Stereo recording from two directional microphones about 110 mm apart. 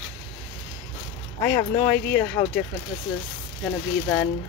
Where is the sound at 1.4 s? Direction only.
20° left (ahead or behind).